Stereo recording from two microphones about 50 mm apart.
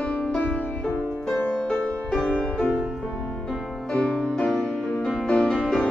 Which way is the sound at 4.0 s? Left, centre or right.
Left.